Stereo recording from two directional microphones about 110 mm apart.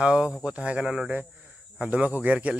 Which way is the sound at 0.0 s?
10° right (ahead or behind).